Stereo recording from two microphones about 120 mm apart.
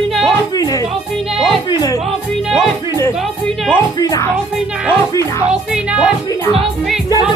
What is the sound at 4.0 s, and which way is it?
Speech, 30° left (ahead or behind).